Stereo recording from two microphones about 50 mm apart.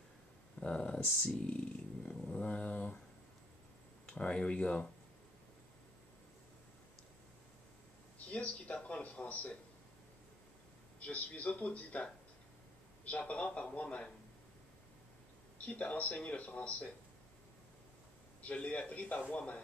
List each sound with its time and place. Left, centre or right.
0.6 s speech: centre
2.0 s a sound: left
4.0 s speech: left
8.3 s a man's voice: left
11.0 s a man's voice: left
15.5 s a man's voice: left
18.4 s a man's voice: left